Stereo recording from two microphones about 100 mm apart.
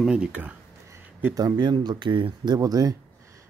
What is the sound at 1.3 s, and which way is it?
Speech, 45° right (ahead or behind).